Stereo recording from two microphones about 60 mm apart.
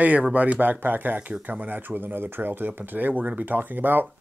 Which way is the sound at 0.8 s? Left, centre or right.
Right.